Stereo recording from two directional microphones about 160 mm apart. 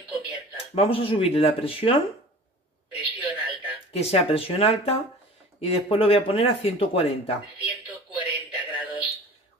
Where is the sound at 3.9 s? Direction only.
40° left (ahead or behind).